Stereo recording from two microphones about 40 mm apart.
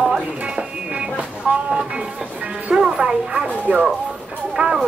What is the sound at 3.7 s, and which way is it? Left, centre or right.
Speech, right.